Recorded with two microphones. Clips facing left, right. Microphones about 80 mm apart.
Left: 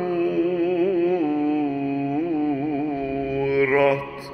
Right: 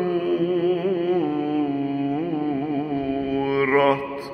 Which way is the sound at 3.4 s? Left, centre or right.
Right.